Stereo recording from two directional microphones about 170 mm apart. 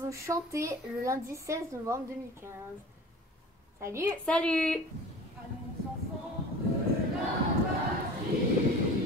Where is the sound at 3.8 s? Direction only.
15° right (ahead or behind).